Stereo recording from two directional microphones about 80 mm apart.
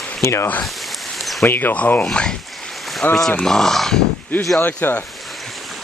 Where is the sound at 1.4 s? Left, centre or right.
Left; by 4.0 s centre.